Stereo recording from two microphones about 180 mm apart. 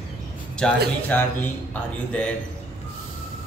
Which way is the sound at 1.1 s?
10° left (ahead or behind).